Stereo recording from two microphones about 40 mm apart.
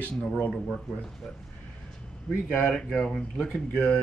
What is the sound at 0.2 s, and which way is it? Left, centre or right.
Speech, left.